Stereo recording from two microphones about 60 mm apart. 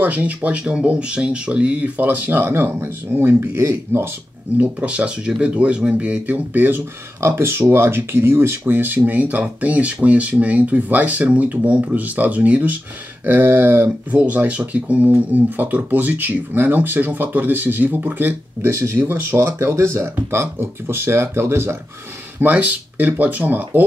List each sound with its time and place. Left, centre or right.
0.0 s speech: right
4.6 s speech: right
7.2 s speech: right
13.2 s speech: right
14.1 s speech: right
22.4 s speech: right